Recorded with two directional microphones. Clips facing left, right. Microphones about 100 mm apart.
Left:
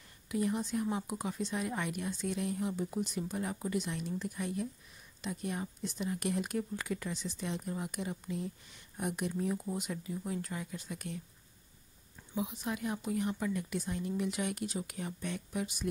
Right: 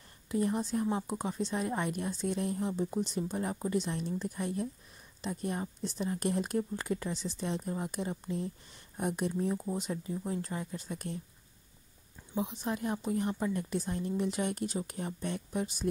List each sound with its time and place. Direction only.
0.3 s speech: 35° right (ahead or behind)
12.4 s speech: 35° right (ahead or behind)